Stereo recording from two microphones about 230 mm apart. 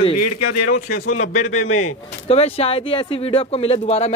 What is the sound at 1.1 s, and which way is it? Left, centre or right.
Speech, left.